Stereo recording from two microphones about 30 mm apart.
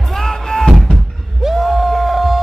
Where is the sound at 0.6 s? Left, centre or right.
Centre.